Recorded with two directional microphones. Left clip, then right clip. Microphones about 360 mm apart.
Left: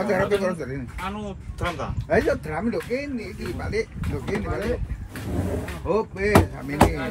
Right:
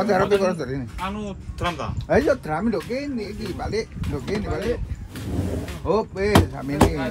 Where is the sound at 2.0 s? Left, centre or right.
Right.